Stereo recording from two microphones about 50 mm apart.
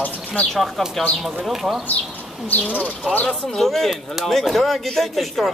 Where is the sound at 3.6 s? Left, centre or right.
Centre.